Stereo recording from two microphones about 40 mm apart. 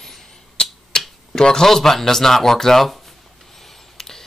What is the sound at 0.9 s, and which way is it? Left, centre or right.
Finger snapping, centre.